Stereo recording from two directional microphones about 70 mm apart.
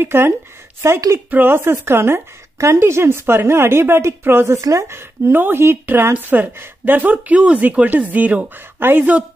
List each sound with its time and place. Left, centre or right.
0.0 s speech: right
1.3 s speech: right